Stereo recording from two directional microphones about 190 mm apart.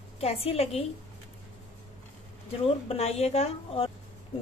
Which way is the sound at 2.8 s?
35° left (ahead or behind).